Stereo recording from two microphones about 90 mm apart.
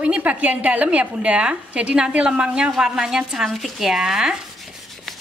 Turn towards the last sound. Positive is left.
turn(degrees=-5)  # may be behind; listen again after turning